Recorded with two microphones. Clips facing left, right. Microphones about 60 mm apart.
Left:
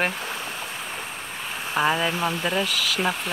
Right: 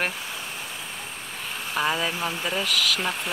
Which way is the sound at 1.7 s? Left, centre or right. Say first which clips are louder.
Left 3 dB; centre.